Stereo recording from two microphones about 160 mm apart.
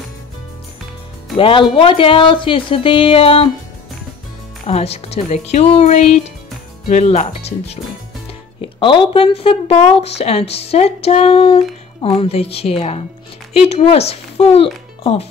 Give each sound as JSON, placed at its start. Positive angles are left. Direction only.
{"t": 1.3, "sound": "speech", "side_deg": 30}
{"t": 4.6, "sound": "speech", "side_deg": 40}
{"t": 8.5, "sound": "speech", "side_deg": 30}